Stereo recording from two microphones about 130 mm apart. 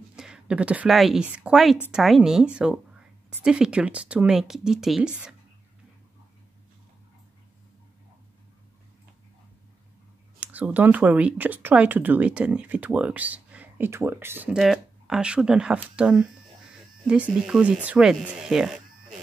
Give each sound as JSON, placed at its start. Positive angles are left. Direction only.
{"t": 0.1, "sound": "a woman's voice", "side_deg": -5}
{"t": 10.4, "sound": "speech", "side_deg": -10}
{"t": 14.5, "sound": "speech", "side_deg": -5}